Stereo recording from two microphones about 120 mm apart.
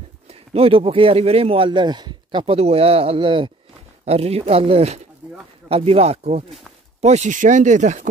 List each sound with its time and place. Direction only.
0.3 s speech: 55° right (ahead or behind)
4.0 s speech: 60° right (ahead or behind)
7.0 s speech: 70° right (ahead or behind); by 8.1 s 90° right